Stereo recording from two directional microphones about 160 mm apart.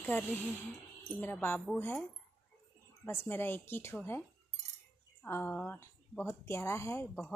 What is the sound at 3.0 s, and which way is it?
Speech, 15° left (ahead or behind).